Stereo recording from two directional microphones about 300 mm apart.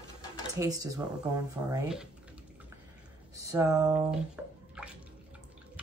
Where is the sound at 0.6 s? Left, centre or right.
Centre.